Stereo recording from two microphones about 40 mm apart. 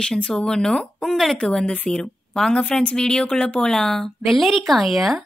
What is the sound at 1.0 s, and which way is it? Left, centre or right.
Speech, centre.